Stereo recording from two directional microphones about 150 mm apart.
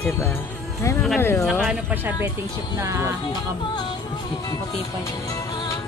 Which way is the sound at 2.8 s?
20° right (ahead or behind).